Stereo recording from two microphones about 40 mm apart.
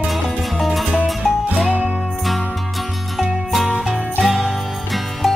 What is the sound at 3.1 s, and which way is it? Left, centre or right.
Music, centre.